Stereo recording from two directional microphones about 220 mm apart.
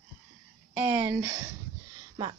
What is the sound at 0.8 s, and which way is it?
Speech, 10° right (ahead or behind).